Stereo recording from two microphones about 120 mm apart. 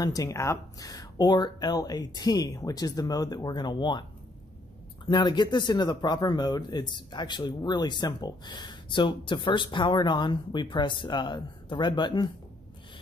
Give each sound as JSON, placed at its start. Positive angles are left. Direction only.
{"t": 0.0, "sound": "speech", "side_deg": 30}
{"t": 5.0, "sound": "speech", "side_deg": 40}